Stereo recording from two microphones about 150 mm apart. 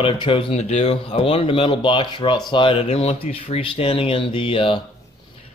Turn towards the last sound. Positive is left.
turn(degrees=35)  # may be behind; listen again after turning